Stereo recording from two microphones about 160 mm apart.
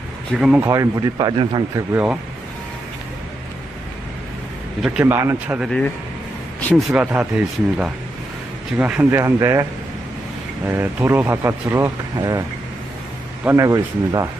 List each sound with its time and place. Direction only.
0.4 s speech: 10° right (ahead or behind)
0.7 s speech: 20° right (ahead or behind)
1.8 s speech: 10° right (ahead or behind)
5.0 s speech: 15° right (ahead or behind)
5.6 s speech: 5° left (ahead or behind)
6.9 s speech: 10° right (ahead or behind)
10.7 s speech: 15° right (ahead or behind)